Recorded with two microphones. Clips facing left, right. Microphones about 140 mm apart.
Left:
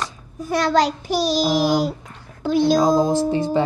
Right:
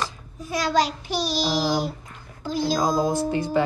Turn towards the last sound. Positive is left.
turn(degrees=25)  # may be behind; listen again after turning